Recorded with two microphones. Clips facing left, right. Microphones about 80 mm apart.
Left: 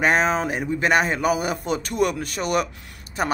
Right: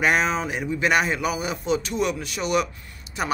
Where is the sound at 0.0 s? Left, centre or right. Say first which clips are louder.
Left 2 dB; left.